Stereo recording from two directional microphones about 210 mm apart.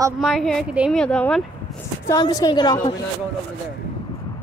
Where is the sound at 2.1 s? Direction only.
20° left (ahead or behind).